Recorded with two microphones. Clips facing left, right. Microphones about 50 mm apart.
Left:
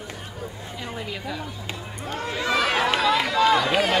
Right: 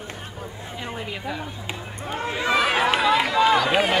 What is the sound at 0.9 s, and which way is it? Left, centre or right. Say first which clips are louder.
Speech: right 1 dB; right.